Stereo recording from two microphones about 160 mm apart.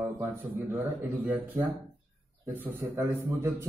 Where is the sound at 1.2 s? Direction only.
10° right (ahead or behind).